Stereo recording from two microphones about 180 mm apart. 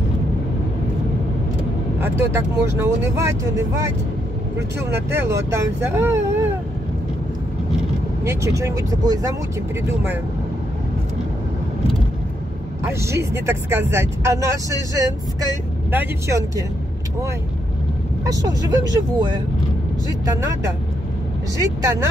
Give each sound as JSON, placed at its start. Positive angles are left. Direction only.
{"t": 2.0, "sound": "speech", "side_deg": -15}
{"t": 8.2, "sound": "speech", "side_deg": -15}
{"t": 13.0, "sound": "speech", "side_deg": -15}
{"t": 18.2, "sound": "speech", "side_deg": -20}
{"t": 21.5, "sound": "speech", "side_deg": -20}